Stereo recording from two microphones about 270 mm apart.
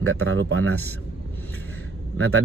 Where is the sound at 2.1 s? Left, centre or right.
Right.